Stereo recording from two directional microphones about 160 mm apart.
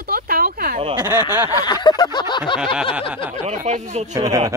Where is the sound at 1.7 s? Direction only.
25° left (ahead or behind).